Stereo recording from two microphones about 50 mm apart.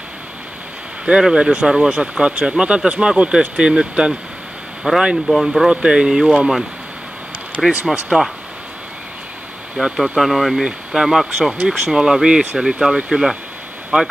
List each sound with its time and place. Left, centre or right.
1.2 s speech: centre
5.7 s speech: centre
7.6 s speech: centre
9.8 s speech: centre
10.6 s speech: centre
11.5 s speech: centre
13.1 s speech: centre